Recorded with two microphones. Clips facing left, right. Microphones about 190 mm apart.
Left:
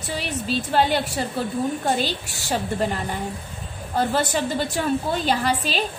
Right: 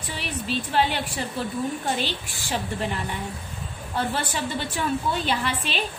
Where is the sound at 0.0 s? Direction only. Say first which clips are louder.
Left 4 dB; 40° left (ahead or behind).